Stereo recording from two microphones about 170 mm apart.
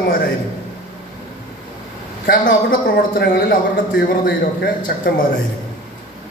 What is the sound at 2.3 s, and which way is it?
A man's voice, 55° left (ahead or behind).